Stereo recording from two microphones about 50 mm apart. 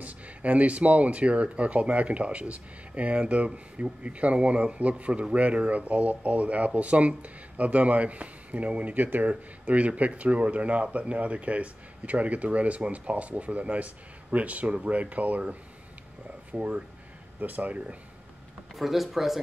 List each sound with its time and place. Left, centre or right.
0.0 s speech: right
9.3 s speech: right
16.5 s speech: right
18.8 s speech: centre